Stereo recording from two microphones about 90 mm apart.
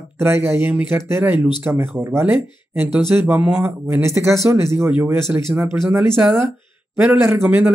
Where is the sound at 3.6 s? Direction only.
30° right (ahead or behind).